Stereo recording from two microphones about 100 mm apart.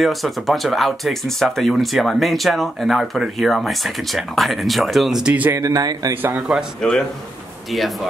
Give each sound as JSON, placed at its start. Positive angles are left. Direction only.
{"t": 0.0, "sound": "speech", "side_deg": 0}
{"t": 5.5, "sound": "speech", "side_deg": -35}
{"t": 6.3, "sound": "speech", "side_deg": -5}
{"t": 6.8, "sound": "a man's voice", "side_deg": 5}